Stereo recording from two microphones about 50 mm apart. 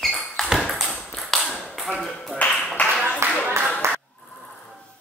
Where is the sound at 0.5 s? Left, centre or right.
Centre.